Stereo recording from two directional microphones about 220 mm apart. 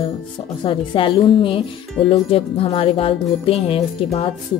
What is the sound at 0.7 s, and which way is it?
A woman's voice, 25° left (ahead or behind).